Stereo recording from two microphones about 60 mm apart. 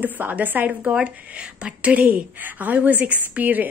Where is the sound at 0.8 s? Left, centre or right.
Centre.